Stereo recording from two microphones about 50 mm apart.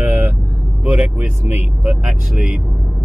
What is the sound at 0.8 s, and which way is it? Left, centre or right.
Speech, right.